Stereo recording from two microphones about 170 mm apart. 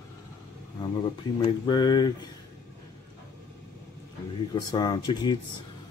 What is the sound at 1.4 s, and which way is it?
Speech, 25° left (ahead or behind).